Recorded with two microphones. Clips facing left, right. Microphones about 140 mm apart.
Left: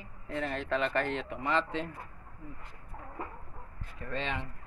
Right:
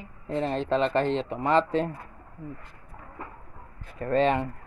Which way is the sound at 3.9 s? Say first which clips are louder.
Right 13 dB; 45° right (ahead or behind).